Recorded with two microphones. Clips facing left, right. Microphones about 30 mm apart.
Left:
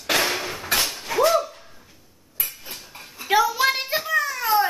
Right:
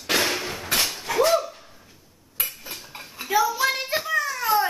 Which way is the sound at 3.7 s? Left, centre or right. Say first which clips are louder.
Left 2 dB; centre.